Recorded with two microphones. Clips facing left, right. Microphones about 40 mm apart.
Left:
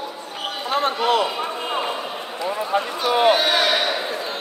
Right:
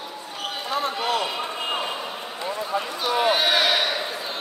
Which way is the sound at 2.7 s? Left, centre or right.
Left.